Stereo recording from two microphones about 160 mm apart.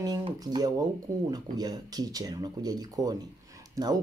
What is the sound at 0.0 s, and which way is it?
Speech, 25° right (ahead or behind).